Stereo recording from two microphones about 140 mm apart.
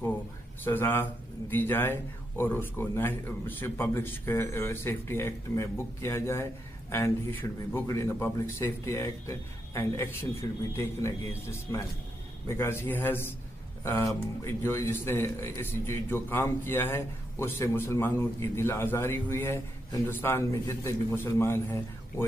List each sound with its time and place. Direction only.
0.7 s a man's voice: 15° left (ahead or behind)